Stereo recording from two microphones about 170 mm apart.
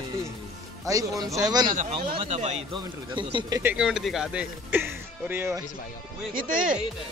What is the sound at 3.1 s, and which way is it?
Speech, 25° right (ahead or behind).